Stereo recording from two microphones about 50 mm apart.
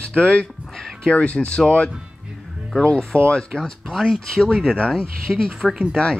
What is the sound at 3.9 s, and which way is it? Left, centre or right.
Speech, centre.